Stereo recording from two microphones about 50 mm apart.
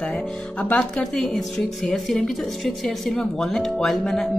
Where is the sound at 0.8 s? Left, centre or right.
Centre.